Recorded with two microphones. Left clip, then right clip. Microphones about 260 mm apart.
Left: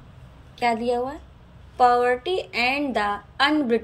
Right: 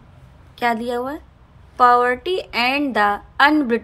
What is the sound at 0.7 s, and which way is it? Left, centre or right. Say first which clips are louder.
A woman's voice: right 2 dB; centre.